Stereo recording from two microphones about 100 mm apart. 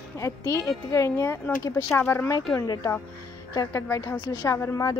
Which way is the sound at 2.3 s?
40° left (ahead or behind).